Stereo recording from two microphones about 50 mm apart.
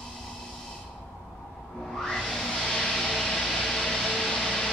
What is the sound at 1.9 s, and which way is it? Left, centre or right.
Music, centre.